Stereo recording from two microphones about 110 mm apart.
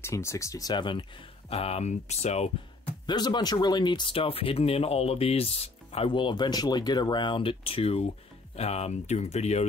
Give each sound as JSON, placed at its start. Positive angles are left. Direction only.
{"t": 0.0, "sound": "speech", "side_deg": 25}
{"t": 1.5, "sound": "speech", "side_deg": 70}
{"t": 3.1, "sound": "speech", "side_deg": 40}